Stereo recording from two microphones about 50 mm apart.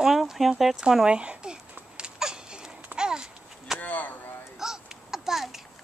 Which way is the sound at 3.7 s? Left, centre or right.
Left.